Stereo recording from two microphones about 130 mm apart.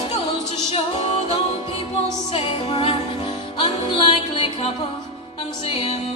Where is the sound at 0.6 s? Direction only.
55° left (ahead or behind).